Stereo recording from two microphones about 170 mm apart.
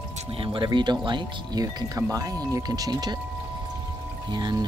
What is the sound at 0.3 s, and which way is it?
Speech, 30° right (ahead or behind).